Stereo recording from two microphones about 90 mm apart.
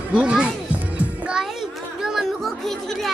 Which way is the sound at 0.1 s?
10° right (ahead or behind).